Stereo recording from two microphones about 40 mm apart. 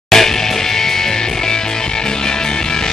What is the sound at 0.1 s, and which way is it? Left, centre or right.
Music, centre.